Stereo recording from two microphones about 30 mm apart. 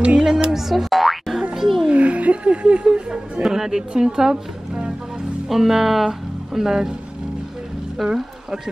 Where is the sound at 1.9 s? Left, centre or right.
Right.